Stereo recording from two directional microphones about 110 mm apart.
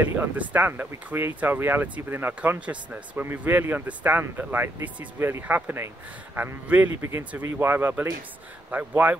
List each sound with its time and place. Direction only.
0.0 s a man's voice: 15° right (ahead or behind)